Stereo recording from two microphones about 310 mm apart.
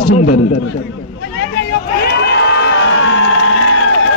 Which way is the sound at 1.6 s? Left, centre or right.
Left.